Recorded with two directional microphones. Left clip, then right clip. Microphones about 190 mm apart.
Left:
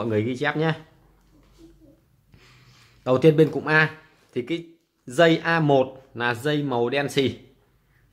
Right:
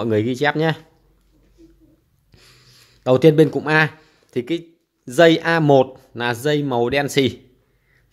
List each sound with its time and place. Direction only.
0.0 s speech: 35° right (ahead or behind)
2.3 s speech: 25° right (ahead or behind)